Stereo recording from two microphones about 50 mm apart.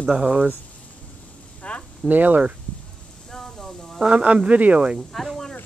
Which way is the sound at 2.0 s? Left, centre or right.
Right.